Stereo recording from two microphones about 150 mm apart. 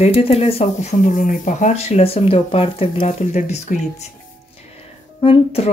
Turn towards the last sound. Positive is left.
turn(degrees=40)  # may be behind; listen again after turning